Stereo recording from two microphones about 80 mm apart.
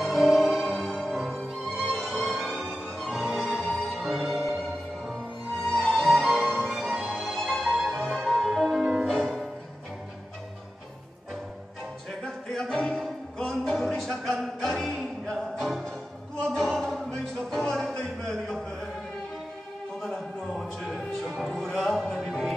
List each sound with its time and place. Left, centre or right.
0.0 s music: centre
6.6 s music: centre
7.2 s music: centre
12.2 s music: centre
20.0 s music: centre